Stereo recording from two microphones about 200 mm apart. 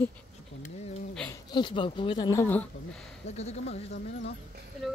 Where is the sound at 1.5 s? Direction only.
25° left (ahead or behind).